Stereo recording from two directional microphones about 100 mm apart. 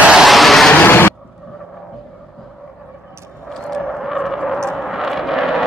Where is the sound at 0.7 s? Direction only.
20° left (ahead or behind).